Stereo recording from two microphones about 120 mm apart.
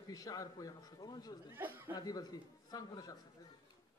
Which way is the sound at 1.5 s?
15° right (ahead or behind).